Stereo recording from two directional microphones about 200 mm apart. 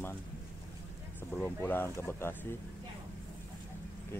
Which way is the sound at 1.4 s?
10° left (ahead or behind).